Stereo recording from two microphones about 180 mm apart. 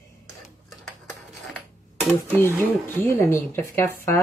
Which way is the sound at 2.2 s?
10° left (ahead or behind).